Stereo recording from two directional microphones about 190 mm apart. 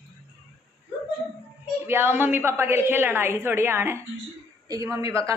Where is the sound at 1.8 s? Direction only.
10° right (ahead or behind).